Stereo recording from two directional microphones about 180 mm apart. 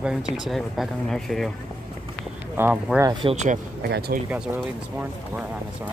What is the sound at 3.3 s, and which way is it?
Speech, 40° right (ahead or behind).